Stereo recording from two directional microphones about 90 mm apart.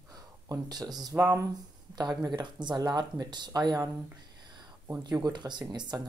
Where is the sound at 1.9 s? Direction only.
50° right (ahead or behind).